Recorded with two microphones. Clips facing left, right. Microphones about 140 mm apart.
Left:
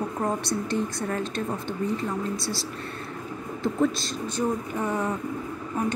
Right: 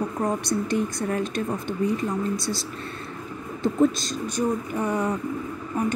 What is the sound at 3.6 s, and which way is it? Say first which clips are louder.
Speech: right 4 dB; 20° right (ahead or behind).